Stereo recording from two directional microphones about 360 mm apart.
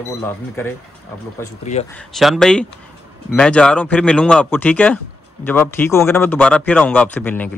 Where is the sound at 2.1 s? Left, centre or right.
Centre.